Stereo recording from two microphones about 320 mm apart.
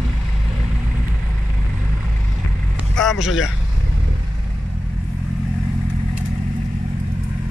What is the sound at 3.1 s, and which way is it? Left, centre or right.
Speech, centre.